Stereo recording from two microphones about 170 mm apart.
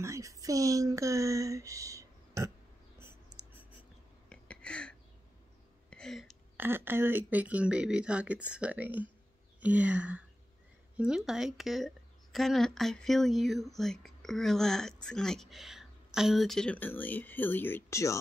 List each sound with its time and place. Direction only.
0.0 s speech: 20° right (ahead or behind)
4.3 s a sound: 5° left (ahead or behind)
6.5 s speech: 10° right (ahead or behind); by 18.2 s 15° left (ahead or behind)